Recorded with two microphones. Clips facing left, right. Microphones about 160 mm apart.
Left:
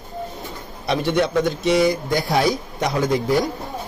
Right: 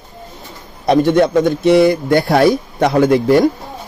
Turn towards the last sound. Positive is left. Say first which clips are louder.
# right 8 dB
turn(degrees=-65)  # may be behind; listen again after turning